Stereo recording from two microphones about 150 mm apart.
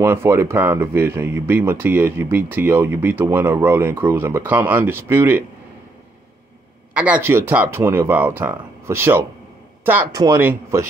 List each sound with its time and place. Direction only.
0.0 s speech: 15° right (ahead or behind)
7.0 s speech: 10° right (ahead or behind)